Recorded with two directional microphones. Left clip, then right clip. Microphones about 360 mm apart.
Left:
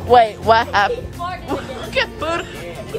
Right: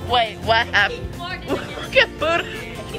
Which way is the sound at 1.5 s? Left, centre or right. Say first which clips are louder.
Right 5 dB; centre.